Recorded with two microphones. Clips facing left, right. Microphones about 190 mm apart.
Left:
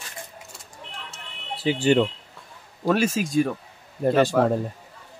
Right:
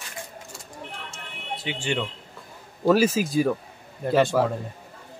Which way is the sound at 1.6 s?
35° left (ahead or behind).